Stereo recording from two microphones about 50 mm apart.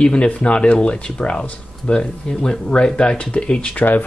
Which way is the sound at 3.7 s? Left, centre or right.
Left.